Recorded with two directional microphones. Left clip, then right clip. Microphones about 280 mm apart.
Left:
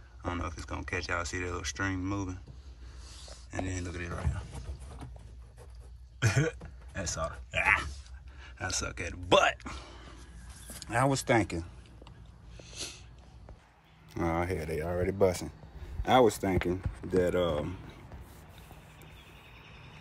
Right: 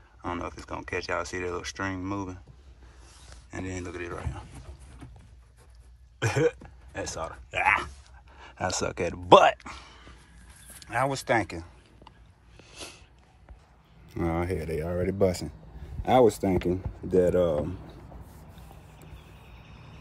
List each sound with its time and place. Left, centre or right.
0.2 s speech: centre
3.4 s speech: centre
6.1 s cough: centre
7.0 s speech: centre
9.7 s a sound: centre
10.8 s speech: centre
12.6 s a sound: centre
14.0 s speech: centre
17.2 s speech: centre